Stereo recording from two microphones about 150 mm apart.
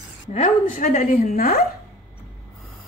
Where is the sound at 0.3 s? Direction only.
55° left (ahead or behind); by 1.6 s 70° left (ahead or behind).